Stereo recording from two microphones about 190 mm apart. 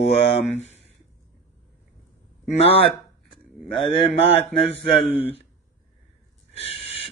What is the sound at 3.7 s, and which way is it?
Speech, 30° left (ahead or behind).